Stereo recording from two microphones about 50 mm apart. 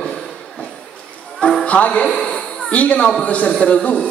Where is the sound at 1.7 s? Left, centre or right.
Left.